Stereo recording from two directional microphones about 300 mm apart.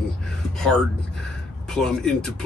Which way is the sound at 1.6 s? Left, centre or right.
Centre.